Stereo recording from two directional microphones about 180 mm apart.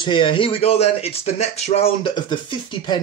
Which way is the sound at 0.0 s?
30° left (ahead or behind).